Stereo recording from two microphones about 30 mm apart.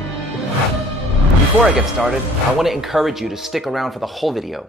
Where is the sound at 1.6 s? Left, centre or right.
Right.